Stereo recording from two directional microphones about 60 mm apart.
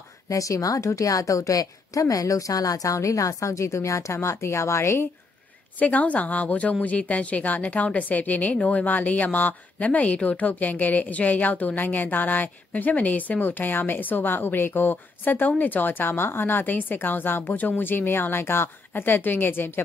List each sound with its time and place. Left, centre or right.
0.3 s a woman's voice: left
5.8 s a woman's voice: left